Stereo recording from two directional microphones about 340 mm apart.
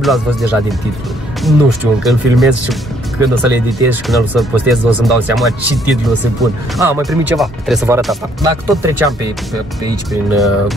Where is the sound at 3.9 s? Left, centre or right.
Centre.